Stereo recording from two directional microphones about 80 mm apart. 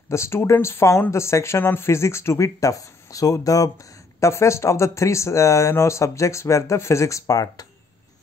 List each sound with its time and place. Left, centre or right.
0.1 s speech: left